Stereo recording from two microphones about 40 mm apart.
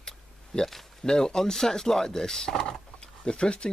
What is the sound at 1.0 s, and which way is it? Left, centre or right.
Speech, centre.